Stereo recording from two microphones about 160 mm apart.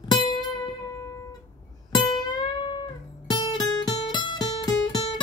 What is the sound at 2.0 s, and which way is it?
Music, 30° left (ahead or behind).